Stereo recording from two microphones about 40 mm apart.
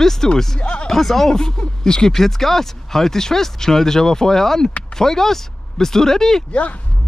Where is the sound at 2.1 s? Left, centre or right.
Centre.